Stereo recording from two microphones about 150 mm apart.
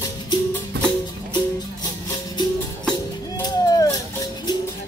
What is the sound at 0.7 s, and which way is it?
Music, 90° right.